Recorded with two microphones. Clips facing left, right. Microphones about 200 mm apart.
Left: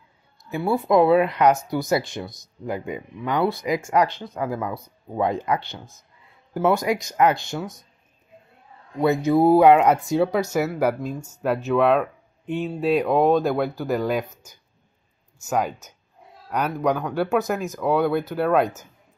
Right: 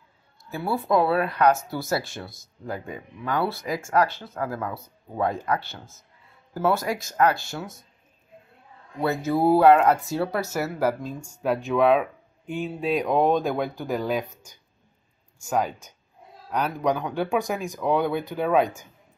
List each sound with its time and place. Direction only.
0.5 s speech: 15° left (ahead or behind)
9.0 s speech: 15° left (ahead or behind)